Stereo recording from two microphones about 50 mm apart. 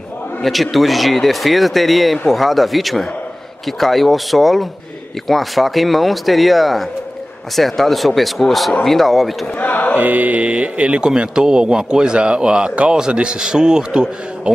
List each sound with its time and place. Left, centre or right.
0.4 s speech: centre
9.6 s choir: left
9.9 s speech: right
11.1 s a man's voice: centre